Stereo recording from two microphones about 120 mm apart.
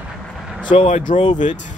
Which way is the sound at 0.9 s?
90° left.